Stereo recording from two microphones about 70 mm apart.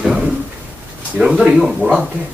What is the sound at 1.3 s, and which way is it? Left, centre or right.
Speech, centre.